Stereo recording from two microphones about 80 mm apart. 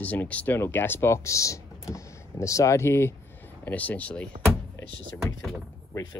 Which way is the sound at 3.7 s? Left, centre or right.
Left.